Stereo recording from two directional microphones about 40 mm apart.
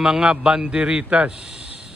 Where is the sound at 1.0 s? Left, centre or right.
Right.